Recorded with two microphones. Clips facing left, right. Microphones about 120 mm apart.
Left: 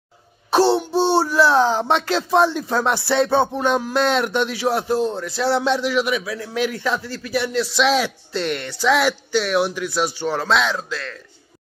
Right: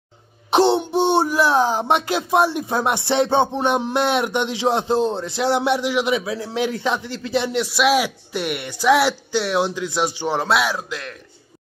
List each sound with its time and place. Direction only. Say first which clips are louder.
0.5 s speech: even; 20° right (ahead or behind)
7.6 s speech: even; 10° right (ahead or behind)